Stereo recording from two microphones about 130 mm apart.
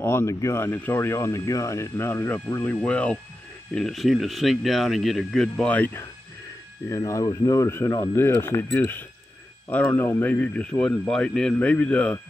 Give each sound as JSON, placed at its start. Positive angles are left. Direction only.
{"t": 0.0, "sound": "speech", "side_deg": 20}
{"t": 6.9, "sound": "speech", "side_deg": 25}